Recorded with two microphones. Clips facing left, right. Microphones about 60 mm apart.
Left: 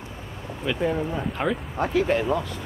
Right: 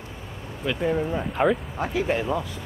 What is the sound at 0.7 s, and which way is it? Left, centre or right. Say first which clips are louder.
Speech: right 1 dB; centre.